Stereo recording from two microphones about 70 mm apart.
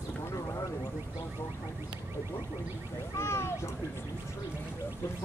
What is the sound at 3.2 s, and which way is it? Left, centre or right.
Speech, left.